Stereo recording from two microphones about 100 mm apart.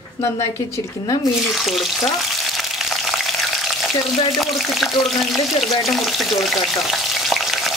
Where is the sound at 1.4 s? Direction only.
Centre (ahead or behind).